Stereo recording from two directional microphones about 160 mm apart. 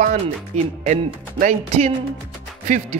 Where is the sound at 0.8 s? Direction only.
50° right (ahead or behind).